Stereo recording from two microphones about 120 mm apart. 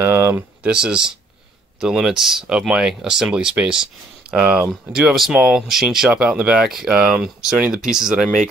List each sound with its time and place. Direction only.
0.0 s speech: 20° right (ahead or behind)
0.7 s speech: 5° right (ahead or behind)